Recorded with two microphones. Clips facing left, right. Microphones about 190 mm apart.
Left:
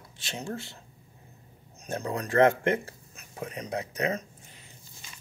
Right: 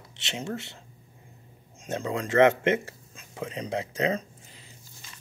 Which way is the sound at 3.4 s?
25° right (ahead or behind).